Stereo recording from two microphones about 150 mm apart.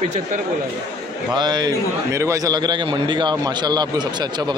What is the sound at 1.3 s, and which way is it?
A man's voice, 30° right (ahead or behind).